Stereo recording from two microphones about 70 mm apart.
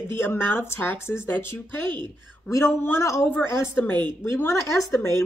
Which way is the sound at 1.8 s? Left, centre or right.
Right.